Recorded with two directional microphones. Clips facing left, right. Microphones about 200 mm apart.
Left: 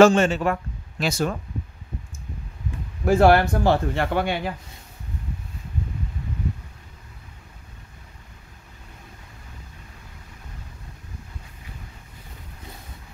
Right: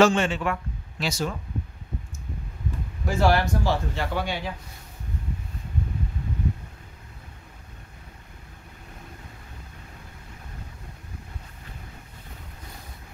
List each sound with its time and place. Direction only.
0.0 s a man's voice: 45° left (ahead or behind)
3.1 s a man's voice: 55° left (ahead or behind)